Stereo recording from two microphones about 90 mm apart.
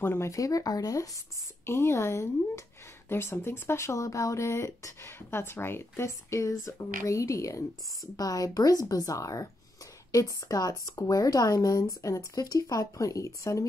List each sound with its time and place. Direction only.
0.0 s speech: 30° left (ahead or behind)
1.7 s speech: 30° left (ahead or behind)